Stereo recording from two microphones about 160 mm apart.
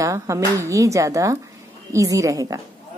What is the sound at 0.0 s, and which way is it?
A woman's voice, 20° right (ahead or behind).